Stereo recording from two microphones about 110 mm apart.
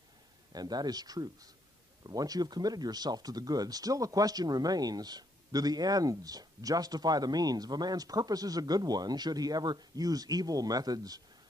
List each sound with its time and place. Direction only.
0.5 s speech: 35° right (ahead or behind)